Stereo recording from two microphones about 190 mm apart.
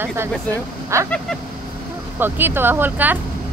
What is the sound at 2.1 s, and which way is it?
Speech, 10° right (ahead or behind).